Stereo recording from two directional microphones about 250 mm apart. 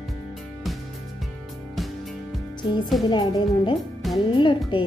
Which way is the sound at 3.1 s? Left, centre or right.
Centre.